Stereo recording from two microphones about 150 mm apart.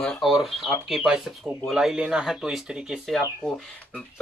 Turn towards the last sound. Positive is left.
turn(degrees=10)  # may be behind; listen again after turning